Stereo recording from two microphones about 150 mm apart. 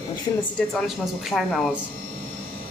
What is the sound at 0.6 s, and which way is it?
Speech, 5° left (ahead or behind).